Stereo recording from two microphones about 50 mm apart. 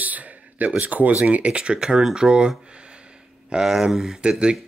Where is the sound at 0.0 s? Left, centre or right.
Right.